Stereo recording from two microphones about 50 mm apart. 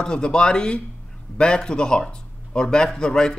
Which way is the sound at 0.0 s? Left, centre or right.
Centre.